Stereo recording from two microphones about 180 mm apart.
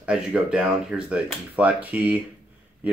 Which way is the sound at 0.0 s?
5° right (ahead or behind).